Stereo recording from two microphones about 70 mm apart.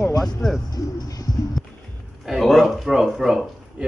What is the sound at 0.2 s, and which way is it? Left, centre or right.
Speech, centre.